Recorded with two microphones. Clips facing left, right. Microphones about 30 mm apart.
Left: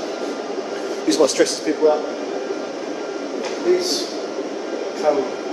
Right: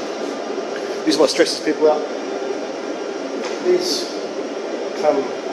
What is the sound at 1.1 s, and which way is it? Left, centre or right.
Speech, right.